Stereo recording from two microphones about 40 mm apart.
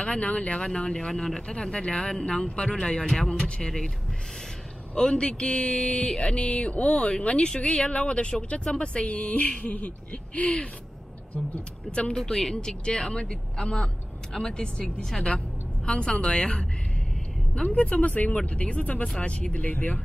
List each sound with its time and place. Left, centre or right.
0.0 s speech: left
4.9 s speech: left
11.9 s speech: left
12.2 s a woman's voice: centre
17.6 s speech: left